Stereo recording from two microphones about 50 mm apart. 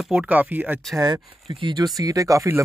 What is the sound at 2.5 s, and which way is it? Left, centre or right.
Speech, right.